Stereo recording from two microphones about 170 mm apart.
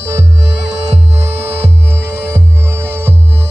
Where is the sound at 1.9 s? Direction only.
15° right (ahead or behind).